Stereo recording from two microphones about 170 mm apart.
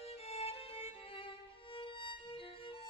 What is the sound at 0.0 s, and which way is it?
Violin, 35° left (ahead or behind).